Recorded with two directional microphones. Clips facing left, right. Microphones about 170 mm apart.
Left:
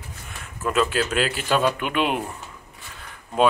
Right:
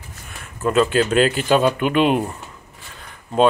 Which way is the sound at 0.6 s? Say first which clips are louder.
Right 5 dB; 30° right (ahead or behind).